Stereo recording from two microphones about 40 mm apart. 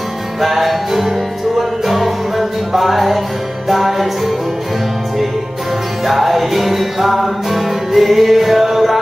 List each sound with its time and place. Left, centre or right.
0.4 s music: centre
6.0 s music: centre